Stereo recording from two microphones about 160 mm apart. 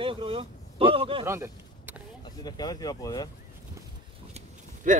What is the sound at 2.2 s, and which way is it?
Speech, 25° left (ahead or behind).